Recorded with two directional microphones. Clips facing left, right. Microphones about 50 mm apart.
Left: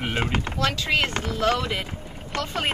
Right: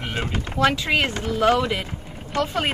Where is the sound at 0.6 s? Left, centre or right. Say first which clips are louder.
Right 5 dB; centre.